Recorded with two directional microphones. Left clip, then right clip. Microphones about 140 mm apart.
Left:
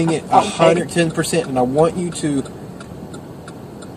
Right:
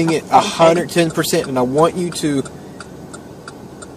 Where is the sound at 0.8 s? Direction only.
30° right (ahead or behind).